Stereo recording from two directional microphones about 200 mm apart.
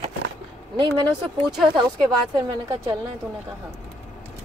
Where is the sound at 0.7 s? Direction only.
20° right (ahead or behind).